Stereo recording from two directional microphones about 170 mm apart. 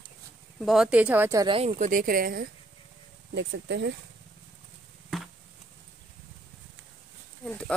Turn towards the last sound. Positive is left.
turn(degrees=5)  # may be behind; listen again after turning